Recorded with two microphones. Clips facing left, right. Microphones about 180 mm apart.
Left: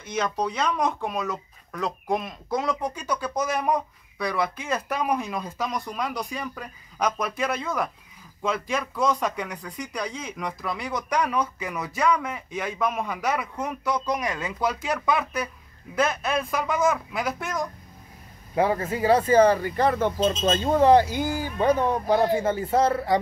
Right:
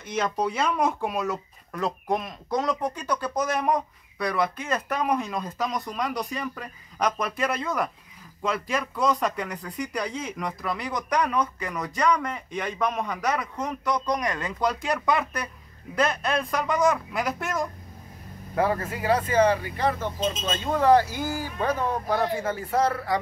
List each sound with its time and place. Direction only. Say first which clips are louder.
0.0 s speech: even; centre (ahead or behind)
18.5 s speech: left 2 dB; 20° left (ahead or behind); by 20.7 s 40° left (ahead or behind)
20.7 s speech: left 1 dB; 25° left (ahead or behind)